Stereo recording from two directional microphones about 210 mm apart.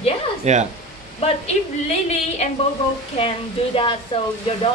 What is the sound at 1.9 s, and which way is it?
A woman's voice, 30° left (ahead or behind).